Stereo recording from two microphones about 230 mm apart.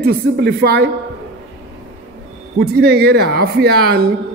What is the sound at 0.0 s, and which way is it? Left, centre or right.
Speech, right.